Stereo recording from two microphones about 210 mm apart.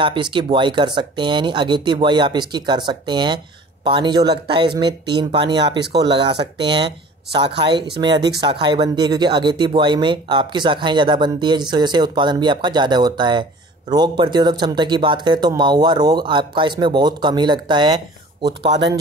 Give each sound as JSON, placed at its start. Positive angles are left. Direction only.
{"t": 0.0, "sound": "speech", "side_deg": -25}